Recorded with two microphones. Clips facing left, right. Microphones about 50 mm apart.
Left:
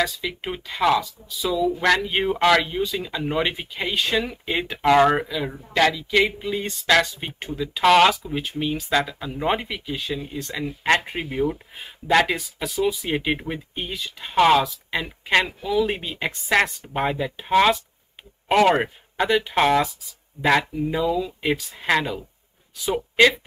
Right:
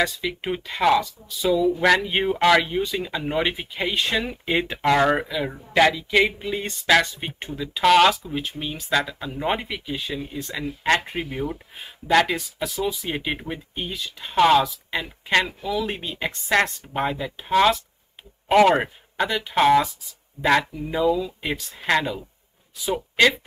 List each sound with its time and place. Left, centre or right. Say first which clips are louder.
0.0 s speech: right 1 dB; centre